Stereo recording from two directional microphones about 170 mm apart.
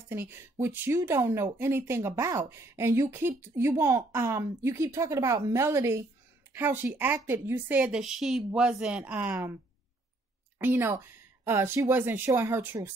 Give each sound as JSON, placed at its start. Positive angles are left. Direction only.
{"t": 0.1, "sound": "speech", "side_deg": -15}
{"t": 10.6, "sound": "speech", "side_deg": -10}